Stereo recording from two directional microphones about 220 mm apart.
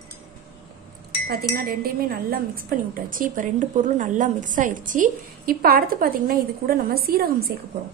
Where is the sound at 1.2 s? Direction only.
45° right (ahead or behind).